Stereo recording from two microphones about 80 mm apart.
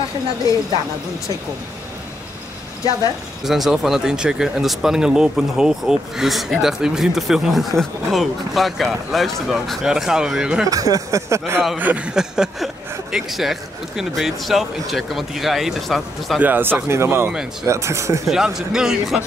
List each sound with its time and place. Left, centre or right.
3.4 s speech: centre
10.7 s a sound: right
11.7 s speech: centre
16.3 s speech: right
16.8 s a sound: right
18.2 s speech: centre